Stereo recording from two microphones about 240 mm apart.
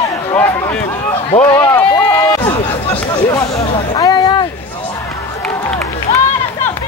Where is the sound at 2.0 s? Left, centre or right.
Centre.